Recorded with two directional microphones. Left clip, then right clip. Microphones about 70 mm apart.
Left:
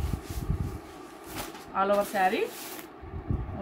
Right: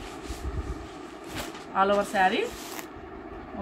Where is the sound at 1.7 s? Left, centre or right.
Centre.